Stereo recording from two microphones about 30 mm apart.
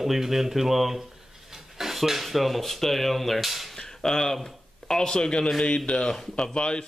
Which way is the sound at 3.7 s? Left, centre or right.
Centre.